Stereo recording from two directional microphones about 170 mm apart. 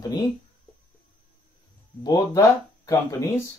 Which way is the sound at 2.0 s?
20° left (ahead or behind).